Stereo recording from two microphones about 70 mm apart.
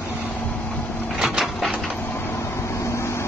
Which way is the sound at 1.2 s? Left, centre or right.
Centre.